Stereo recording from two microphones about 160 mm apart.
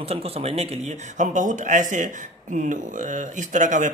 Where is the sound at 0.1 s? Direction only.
40° right (ahead or behind).